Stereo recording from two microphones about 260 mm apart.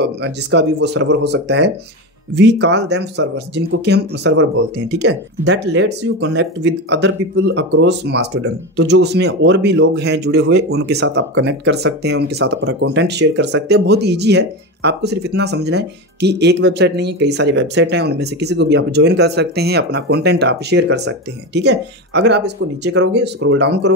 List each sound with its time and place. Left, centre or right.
0.0 s speech: right